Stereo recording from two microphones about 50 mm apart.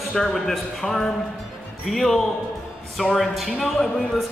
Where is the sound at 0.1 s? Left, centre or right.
Centre.